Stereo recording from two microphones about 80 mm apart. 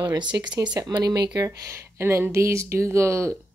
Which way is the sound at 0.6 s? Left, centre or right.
Right.